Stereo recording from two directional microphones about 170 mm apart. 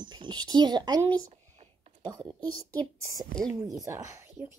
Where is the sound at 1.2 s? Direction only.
40° right (ahead or behind).